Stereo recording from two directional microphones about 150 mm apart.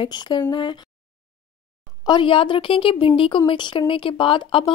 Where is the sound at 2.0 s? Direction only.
30° left (ahead or behind).